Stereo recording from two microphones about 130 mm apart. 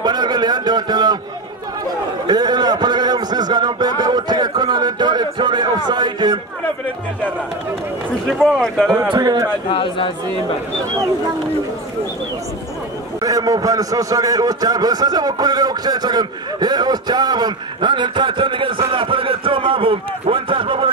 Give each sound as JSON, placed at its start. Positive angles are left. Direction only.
{"t": 0.0, "sound": "a sound", "side_deg": -35}
{"t": 2.2, "sound": "a sound", "side_deg": -35}
{"t": 8.3, "sound": "speech", "side_deg": 0}
{"t": 9.1, "sound": "a man's voice", "side_deg": -30}
{"t": 9.7, "sound": "speech", "side_deg": 40}
{"t": 13.2, "sound": "a man's voice", "side_deg": -30}